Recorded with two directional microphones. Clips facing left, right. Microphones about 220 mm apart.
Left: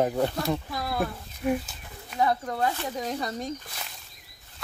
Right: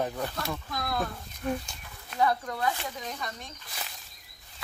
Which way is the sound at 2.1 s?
25° left (ahead or behind).